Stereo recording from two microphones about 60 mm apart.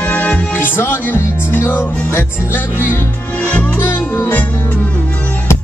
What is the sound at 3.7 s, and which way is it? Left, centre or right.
Music, left.